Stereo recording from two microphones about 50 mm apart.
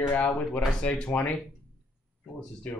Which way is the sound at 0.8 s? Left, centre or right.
Left.